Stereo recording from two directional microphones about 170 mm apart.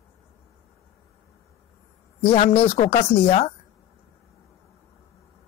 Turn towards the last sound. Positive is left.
turn(degrees=40)  # may be behind; listen again after turning